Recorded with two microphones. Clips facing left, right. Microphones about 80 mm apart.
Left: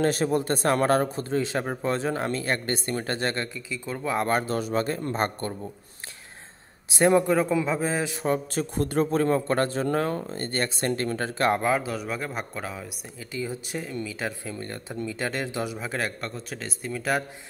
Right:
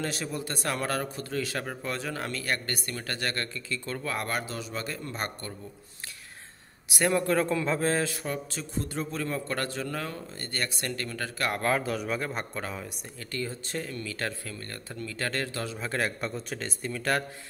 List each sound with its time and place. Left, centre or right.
0.0 s a man's voice: left
3.5 s speech: centre
4.3 s speech: left
6.9 s a man's voice: left
7.2 s speech: centre
8.1 s a man's voice: left
8.5 s speech: left
11.6 s speech: centre
15.9 s a man's voice: centre